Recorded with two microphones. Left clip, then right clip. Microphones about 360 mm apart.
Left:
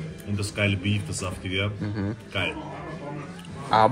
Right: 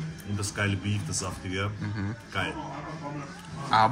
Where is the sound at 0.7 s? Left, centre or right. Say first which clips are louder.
Left 4 dB; centre.